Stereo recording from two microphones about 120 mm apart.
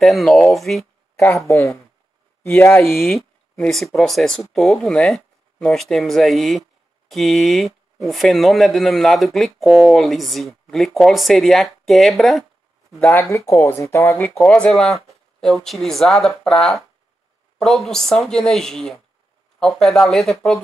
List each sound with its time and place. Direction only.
0.0 s speech: centre (ahead or behind)
1.5 s speech: 25° left (ahead or behind)
2.8 s speech: 5° left (ahead or behind)
13.0 s speech: 20° left (ahead or behind)
14.3 s speech: 10° left (ahead or behind)